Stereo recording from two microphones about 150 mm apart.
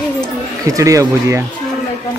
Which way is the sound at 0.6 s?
20° right (ahead or behind).